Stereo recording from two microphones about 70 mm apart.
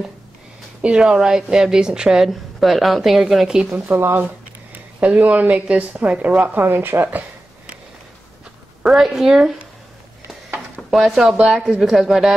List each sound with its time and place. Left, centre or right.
0.8 s a woman's voice: centre
3.7 s speech: right
4.7 s speech: right
8.8 s speech: centre
10.9 s speech: centre